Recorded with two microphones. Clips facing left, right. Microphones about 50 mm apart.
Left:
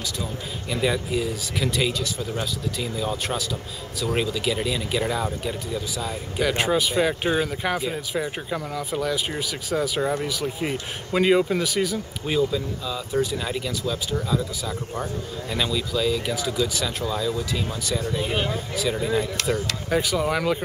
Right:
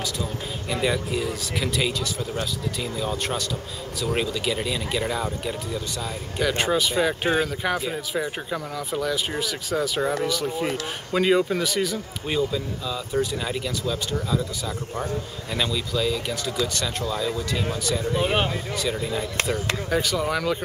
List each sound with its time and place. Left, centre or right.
0.7 s a man's voice: centre
18.2 s speech: right
18.8 s a man's voice: centre